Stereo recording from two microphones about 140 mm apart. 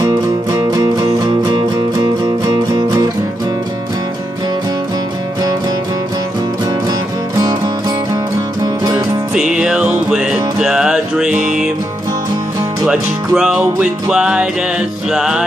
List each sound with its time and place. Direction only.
0.0 s music: 25° right (ahead or behind)
6.9 s music: 25° right (ahead or behind)
8.9 s music: 10° right (ahead or behind)
12.8 s music: 5° right (ahead or behind)